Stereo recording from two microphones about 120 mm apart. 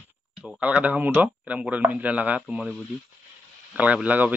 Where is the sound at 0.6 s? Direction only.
10° right (ahead or behind).